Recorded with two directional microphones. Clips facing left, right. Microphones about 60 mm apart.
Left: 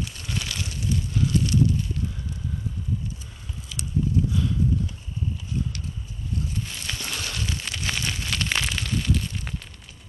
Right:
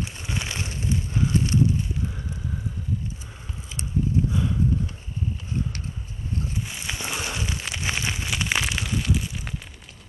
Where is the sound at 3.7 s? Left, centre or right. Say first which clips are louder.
Even; right.